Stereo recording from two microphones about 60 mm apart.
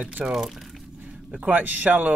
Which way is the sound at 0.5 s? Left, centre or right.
Centre.